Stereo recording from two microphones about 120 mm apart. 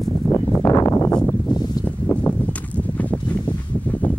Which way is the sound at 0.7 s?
30° left (ahead or behind).